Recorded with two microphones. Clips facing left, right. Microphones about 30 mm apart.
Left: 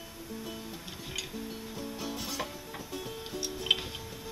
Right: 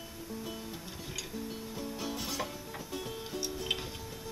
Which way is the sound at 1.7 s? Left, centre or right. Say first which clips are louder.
Even; centre.